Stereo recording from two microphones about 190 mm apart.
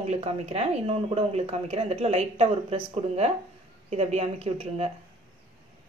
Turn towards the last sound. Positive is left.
turn(degrees=-35)  # may be behind; listen again after turning